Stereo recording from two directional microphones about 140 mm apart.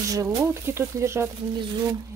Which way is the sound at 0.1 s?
20° right (ahead or behind).